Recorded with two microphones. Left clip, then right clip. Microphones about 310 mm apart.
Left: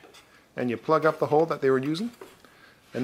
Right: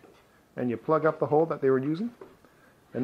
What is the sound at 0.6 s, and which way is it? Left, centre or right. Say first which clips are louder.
Speech: left 2 dB; centre.